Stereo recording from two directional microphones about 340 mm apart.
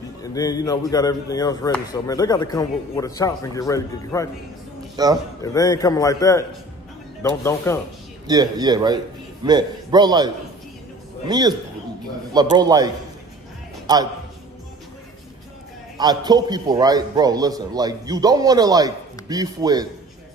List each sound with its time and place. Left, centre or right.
0.2 s speech: centre
4.9 s a man's voice: centre
5.4 s speech: centre
7.4 s speech: centre
8.3 s a man's voice: centre
16.0 s a man's voice: centre